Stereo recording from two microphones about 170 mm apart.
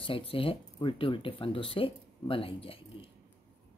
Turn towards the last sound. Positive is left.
turn(degrees=30)  # may be behind; listen again after turning